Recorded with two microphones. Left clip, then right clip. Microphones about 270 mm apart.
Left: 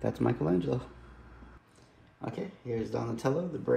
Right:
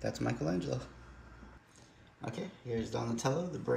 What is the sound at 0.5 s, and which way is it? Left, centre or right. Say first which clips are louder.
Speech: left 6 dB; centre.